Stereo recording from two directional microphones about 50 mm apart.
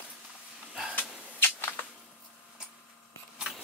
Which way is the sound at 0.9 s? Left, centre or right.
Left.